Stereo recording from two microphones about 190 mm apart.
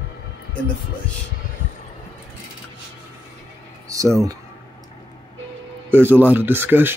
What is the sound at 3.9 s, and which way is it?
Speech, 15° right (ahead or behind).